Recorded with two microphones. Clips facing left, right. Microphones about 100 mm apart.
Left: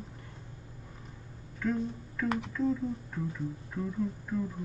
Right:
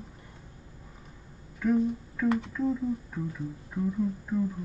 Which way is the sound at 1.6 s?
10° right (ahead or behind).